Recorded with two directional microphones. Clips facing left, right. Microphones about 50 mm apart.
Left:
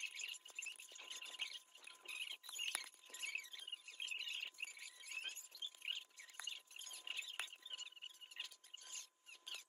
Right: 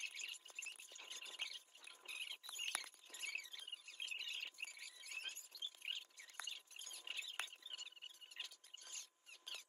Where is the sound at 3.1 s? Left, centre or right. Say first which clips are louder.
Left 1 dB; left.